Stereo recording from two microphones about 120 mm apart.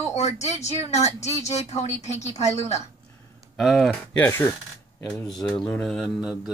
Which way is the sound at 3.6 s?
Centre (ahead or behind).